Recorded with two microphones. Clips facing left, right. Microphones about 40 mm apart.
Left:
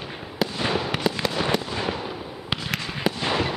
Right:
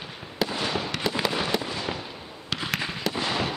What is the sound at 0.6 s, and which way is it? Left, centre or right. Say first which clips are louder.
Fireworks: left 4 dB; centre.